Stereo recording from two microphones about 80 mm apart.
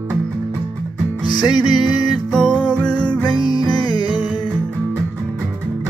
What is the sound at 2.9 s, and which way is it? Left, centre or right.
Music, left.